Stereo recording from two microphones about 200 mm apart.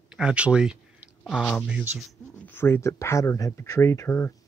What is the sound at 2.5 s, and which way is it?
Speech, 10° left (ahead or behind).